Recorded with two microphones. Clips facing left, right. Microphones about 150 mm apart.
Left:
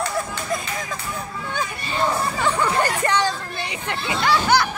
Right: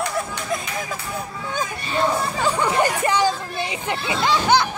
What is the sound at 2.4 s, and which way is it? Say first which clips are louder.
Hubbub: right 1 dB; 15° right (ahead or behind).